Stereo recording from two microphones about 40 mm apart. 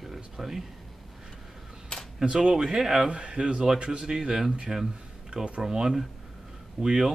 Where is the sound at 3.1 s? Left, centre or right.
Right; by 4.8 s centre.